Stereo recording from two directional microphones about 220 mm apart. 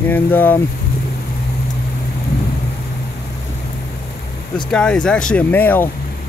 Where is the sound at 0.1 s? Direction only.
10° left (ahead or behind).